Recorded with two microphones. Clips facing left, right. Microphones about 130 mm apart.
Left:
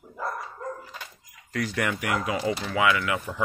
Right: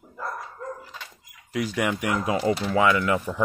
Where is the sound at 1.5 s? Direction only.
15° right (ahead or behind).